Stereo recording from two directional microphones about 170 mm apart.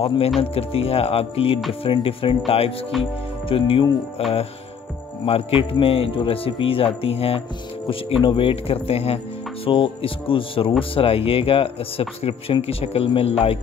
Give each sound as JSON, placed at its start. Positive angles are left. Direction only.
{"t": 0.4, "sound": "speech", "side_deg": 35}